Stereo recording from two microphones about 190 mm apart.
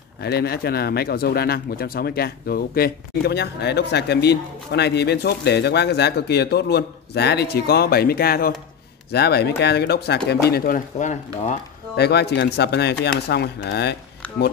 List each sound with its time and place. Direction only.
0.2 s speech: 55° left (ahead or behind)
12.0 s speech: 60° left (ahead or behind)